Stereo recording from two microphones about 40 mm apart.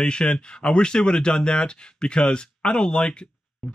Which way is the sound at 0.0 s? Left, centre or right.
Left.